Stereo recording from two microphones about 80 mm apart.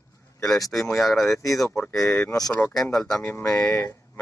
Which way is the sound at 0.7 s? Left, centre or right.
Centre.